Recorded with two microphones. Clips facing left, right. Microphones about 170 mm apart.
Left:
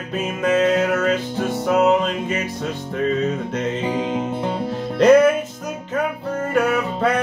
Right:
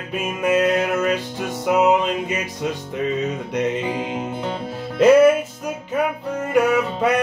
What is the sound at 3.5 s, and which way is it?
Music, 10° right (ahead or behind).